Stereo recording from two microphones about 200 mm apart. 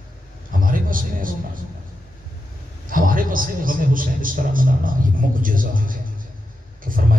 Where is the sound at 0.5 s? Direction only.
45° right (ahead or behind).